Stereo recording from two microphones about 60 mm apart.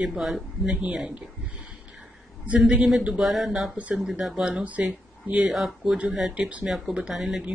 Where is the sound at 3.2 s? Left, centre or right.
Centre.